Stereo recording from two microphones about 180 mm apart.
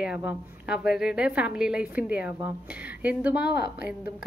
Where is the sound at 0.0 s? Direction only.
5° right (ahead or behind).